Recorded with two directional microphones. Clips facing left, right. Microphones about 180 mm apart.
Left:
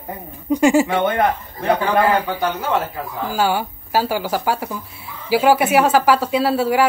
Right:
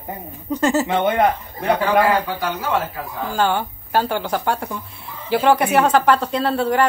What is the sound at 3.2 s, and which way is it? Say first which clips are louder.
Speech: even; 5° left (ahead or behind).